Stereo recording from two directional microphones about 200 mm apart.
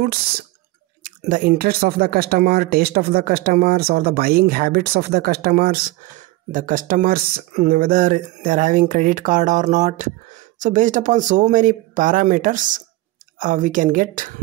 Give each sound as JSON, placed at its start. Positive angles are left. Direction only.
{"t": 0.0, "sound": "speech", "side_deg": -50}